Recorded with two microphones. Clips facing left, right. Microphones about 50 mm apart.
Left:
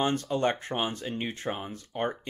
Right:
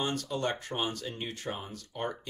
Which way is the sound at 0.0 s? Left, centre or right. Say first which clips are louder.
Left 5 dB; left.